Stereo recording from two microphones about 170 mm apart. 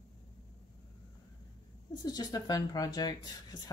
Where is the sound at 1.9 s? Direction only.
25° left (ahead or behind).